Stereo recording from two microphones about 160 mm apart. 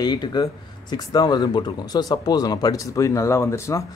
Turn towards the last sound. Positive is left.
turn(degrees=15)  # may be behind; listen again after turning